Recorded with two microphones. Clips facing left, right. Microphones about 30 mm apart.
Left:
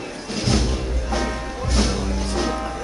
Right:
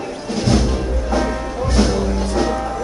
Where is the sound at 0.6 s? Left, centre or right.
Centre.